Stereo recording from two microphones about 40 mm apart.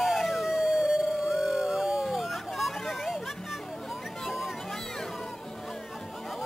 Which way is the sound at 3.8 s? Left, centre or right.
Centre.